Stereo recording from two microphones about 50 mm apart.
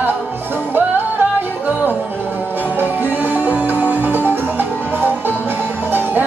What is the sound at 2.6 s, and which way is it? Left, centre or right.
Music, right.